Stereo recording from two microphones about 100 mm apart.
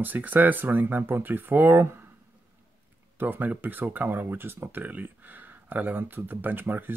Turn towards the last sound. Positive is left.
turn(degrees=-20)  # may be behind; listen again after turning